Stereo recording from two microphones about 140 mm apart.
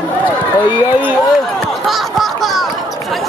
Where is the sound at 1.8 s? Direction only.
Centre (ahead or behind).